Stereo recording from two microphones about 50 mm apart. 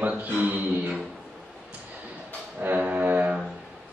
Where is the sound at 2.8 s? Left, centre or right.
Right.